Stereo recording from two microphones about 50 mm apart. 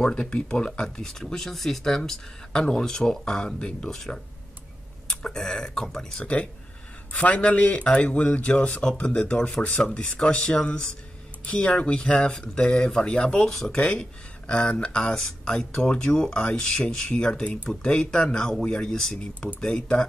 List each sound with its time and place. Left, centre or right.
0.0 s speech: centre
6.2 s a man's voice: left; by 13.9 s centre
14.5 s a man's voice: left